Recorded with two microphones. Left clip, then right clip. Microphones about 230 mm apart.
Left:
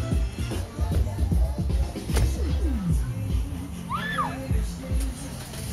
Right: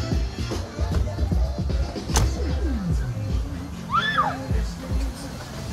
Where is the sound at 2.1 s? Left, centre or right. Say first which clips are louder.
Right 6 dB; left.